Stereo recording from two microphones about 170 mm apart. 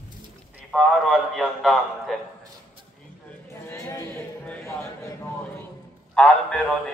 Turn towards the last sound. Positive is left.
turn(degrees=5)  # may be behind; listen again after turning